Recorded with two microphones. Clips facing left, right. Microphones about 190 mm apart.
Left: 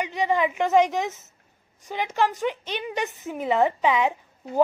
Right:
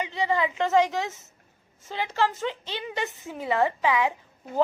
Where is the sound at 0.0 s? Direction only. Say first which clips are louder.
Left 2 dB; 15° left (ahead or behind).